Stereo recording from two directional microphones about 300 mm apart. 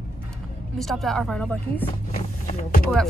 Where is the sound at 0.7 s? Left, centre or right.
Centre.